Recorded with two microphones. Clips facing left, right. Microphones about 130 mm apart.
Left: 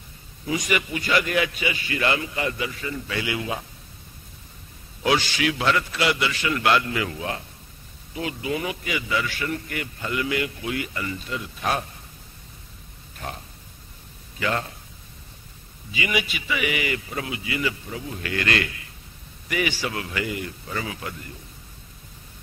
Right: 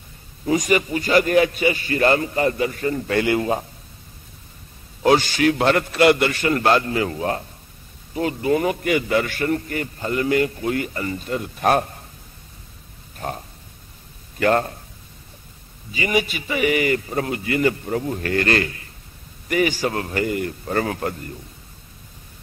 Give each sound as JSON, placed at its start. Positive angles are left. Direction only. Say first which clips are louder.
{"t": 0.5, "sound": "a man's voice", "louder": "right 6 dB", "side_deg": -40}
{"t": 5.0, "sound": "a man's voice", "louder": "right 6 dB", "side_deg": -45}
{"t": 13.2, "sound": "a man's voice", "louder": "right 6 dB", "side_deg": -40}
{"t": 14.4, "sound": "a man's voice", "louder": "right 8 dB", "side_deg": -50}
{"t": 15.9, "sound": "a man's voice", "louder": "right 5 dB", "side_deg": -40}